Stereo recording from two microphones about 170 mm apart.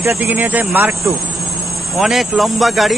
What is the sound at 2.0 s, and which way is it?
Speech, centre (ahead or behind).